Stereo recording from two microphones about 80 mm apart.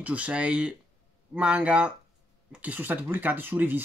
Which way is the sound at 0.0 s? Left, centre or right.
Centre.